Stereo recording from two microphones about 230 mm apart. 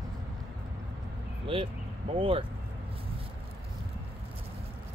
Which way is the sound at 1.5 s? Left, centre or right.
Right.